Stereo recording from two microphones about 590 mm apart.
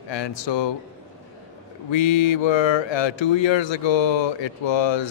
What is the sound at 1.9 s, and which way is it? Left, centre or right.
Speech, left.